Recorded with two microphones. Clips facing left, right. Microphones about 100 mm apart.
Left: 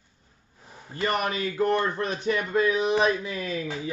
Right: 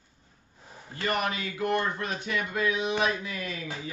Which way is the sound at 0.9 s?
35° left (ahead or behind).